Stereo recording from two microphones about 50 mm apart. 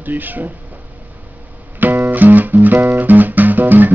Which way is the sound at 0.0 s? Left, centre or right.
Right.